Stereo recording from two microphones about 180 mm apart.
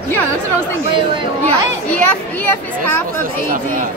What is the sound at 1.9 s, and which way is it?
A child's voice, 10° left (ahead or behind).